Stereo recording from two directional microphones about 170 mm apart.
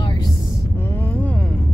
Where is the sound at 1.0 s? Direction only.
10° left (ahead or behind).